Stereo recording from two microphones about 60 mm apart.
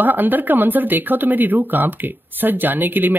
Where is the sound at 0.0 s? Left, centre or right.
Right.